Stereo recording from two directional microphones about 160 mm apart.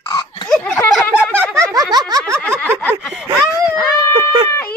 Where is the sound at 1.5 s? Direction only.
20° right (ahead or behind).